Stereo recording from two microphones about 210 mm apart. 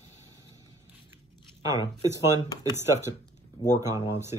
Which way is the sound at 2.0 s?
15° right (ahead or behind).